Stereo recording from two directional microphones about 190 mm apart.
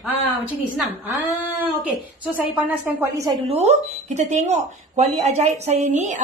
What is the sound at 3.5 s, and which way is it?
Speech, 35° right (ahead or behind).